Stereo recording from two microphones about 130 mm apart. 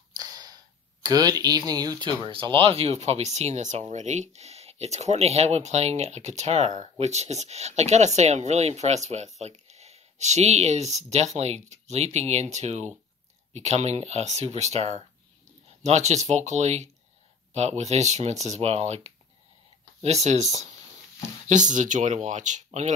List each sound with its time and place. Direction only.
0.1 s a sound: 30° right (ahead or behind)
1.0 s speech: 30° right (ahead or behind); by 20.5 s 60° right (ahead or behind)
21.5 s speech: 75° right (ahead or behind)